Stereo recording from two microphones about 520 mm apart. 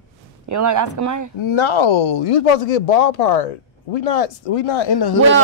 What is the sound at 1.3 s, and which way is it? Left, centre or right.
Speech, left.